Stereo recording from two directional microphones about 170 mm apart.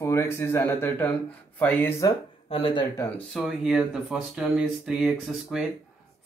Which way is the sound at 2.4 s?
30° left (ahead or behind).